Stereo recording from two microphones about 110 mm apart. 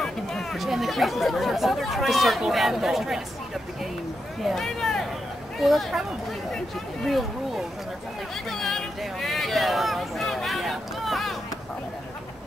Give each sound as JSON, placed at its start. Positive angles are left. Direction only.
{"t": 0.0, "sound": "speech", "side_deg": 5}
{"t": 4.4, "sound": "speech", "side_deg": 0}
{"t": 7.1, "sound": "speech", "side_deg": 0}
{"t": 8.5, "sound": "a sound", "side_deg": 5}